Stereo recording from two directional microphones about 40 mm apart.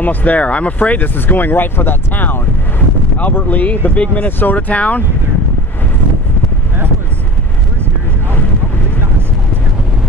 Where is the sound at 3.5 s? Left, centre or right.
Left.